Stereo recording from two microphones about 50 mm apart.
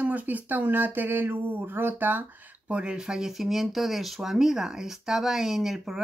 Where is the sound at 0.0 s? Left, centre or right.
Right.